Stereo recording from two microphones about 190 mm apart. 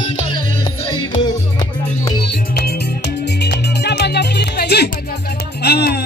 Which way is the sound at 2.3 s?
60° left (ahead or behind).